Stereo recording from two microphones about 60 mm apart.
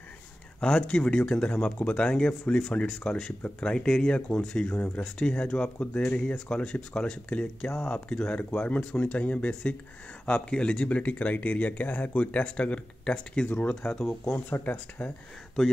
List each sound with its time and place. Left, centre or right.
0.6 s speech: centre
4.7 s speech: left